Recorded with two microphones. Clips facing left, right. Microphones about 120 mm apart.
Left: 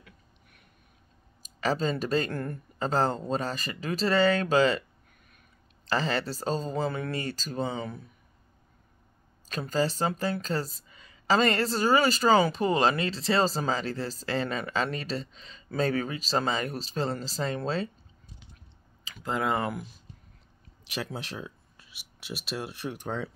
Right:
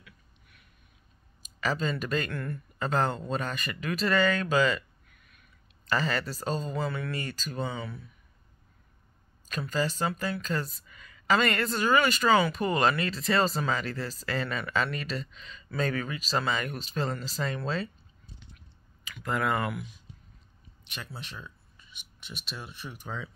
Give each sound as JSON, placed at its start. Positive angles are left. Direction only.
{"t": 0.0, "sound": "a sound", "side_deg": 50}
{"t": 1.4, "sound": "speech", "side_deg": 35}
{"t": 9.5, "sound": "a woman's voice", "side_deg": 35}
{"t": 19.0, "sound": "speech", "side_deg": 25}
{"t": 20.9, "sound": "speech", "side_deg": 90}
{"t": 21.8, "sound": "speech", "side_deg": 5}
{"t": 23.0, "sound": "speech", "side_deg": 65}